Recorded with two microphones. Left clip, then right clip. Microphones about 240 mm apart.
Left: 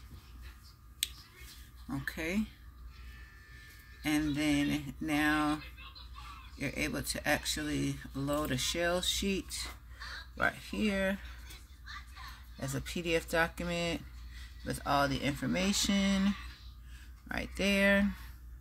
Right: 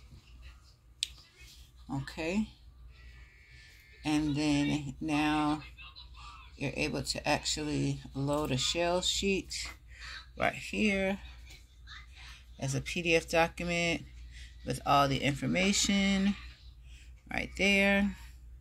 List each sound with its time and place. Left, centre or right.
1.9 s speech: left
4.1 s speech: left
6.6 s speech: left
10.0 s speech: centre
12.5 s speech: centre